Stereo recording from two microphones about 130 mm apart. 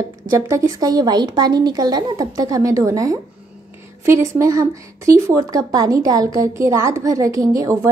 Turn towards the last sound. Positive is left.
turn(degrees=-25)  # may be behind; listen again after turning